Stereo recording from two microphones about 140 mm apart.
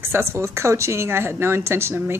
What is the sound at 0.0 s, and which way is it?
Speech, 20° right (ahead or behind).